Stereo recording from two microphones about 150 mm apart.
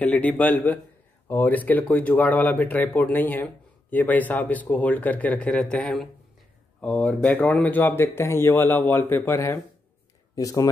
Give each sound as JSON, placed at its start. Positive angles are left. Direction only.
{"t": 0.0, "sound": "speech", "side_deg": 10}